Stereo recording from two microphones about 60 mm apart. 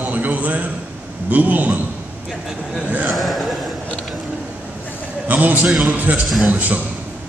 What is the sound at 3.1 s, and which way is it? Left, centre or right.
Chuckle, centre.